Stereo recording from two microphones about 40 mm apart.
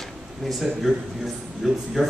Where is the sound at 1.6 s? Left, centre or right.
Centre.